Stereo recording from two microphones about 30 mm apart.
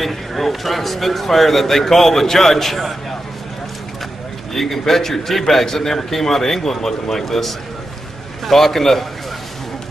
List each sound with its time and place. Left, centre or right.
0.0 s a man's voice: centre
4.6 s a man's voice: centre